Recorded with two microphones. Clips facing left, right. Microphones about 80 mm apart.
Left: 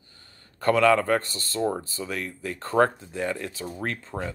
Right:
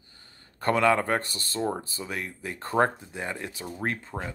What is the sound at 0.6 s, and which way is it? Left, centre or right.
Speech, right.